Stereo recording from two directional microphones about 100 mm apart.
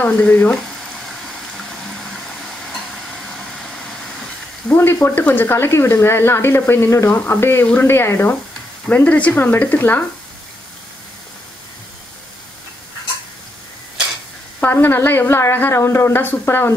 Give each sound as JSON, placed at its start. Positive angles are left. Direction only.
{"t": 0.0, "sound": "speech", "side_deg": 20}
{"t": 4.6, "sound": "speech", "side_deg": 20}
{"t": 14.6, "sound": "speech", "side_deg": 20}